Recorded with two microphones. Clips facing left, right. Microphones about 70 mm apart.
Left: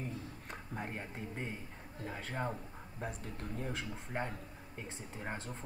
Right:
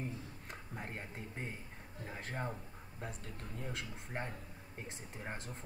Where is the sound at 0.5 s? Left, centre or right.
Centre.